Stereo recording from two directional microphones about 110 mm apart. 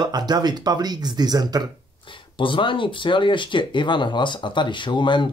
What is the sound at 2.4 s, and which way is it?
Speech, 50° left (ahead or behind).